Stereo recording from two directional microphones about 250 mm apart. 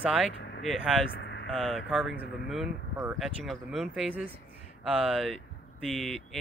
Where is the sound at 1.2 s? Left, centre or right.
Left.